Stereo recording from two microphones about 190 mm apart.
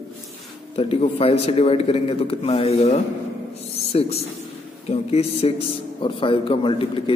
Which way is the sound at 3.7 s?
35° left (ahead or behind).